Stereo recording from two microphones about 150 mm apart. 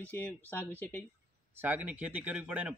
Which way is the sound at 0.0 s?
10° left (ahead or behind).